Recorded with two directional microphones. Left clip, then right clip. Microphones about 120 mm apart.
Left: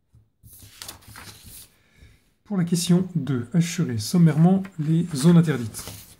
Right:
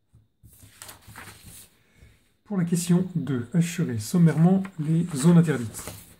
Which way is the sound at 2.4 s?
30° left (ahead or behind).